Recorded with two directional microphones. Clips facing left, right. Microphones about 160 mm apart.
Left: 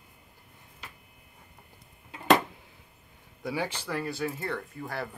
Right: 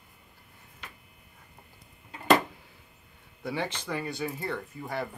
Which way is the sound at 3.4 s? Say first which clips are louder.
Even; 10° left (ahead or behind).